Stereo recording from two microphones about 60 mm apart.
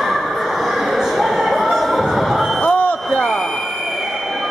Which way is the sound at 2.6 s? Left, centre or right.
Left.